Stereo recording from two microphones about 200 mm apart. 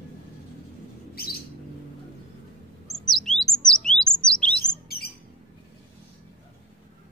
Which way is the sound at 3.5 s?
5° left (ahead or behind).